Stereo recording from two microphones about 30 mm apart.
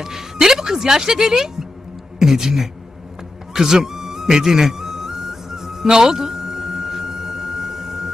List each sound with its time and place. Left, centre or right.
0.0 s a sound: centre
2.1 s a woman's voice: centre
3.5 s music: centre